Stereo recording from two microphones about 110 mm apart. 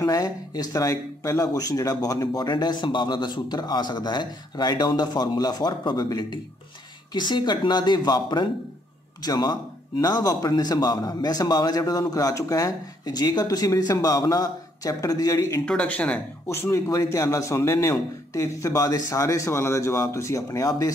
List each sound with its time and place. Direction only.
0.0 s speech: 35° left (ahead or behind)
15.6 s speech: 10° left (ahead or behind)
16.4 s a man's voice: 25° left (ahead or behind)